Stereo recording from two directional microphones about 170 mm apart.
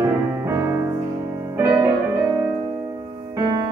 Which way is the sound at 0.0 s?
15° right (ahead or behind).